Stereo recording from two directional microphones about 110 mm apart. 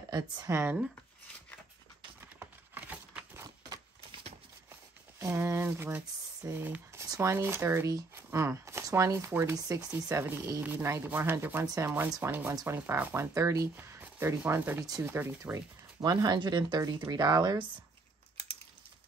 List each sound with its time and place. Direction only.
0.5 s speech: 25° right (ahead or behind)
2.3 s a sound: 15° right (ahead or behind)
5.2 s speech: 25° right (ahead or behind)
11.6 s speech: 30° right (ahead or behind)
12.2 s speech: 20° right (ahead or behind)
16.0 s speech: 35° right (ahead or behind)